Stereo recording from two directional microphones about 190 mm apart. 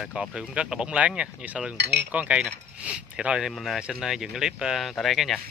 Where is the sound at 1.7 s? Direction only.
60° right (ahead or behind).